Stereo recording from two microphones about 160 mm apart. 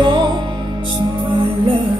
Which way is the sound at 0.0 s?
30° right (ahead or behind).